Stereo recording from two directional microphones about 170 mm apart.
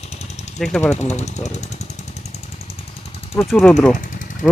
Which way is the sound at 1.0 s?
40° left (ahead or behind).